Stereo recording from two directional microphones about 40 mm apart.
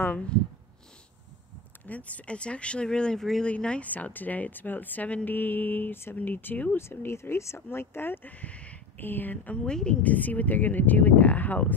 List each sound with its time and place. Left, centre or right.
1.9 s speech: left
3.2 s speech: centre
3.4 s speech: left
3.8 s speech: left
5.3 s mantra: left
6.1 s speech: left
6.8 s speech: left
8.3 s speech: left
8.9 s speech: left